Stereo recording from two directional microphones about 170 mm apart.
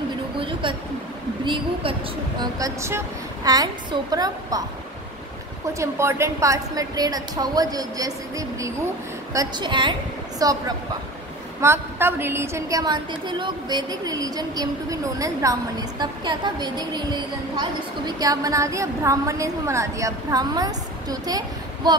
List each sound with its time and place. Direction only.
0.4 s a sound: 30° right (ahead or behind)
1.4 s a woman's voice: 30° right (ahead or behind)
2.4 s speech: 20° right (ahead or behind)
5.7 s speech: 15° right (ahead or behind)
11.6 s speech: 15° right (ahead or behind)